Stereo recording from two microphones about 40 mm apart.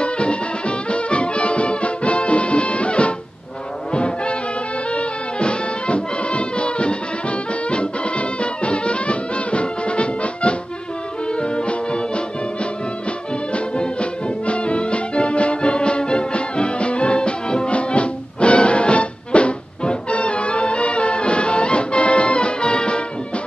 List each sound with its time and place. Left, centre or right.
0.0 s music: left
3.9 s brass instrument: left
4.9 s music: left
13.5 s music: left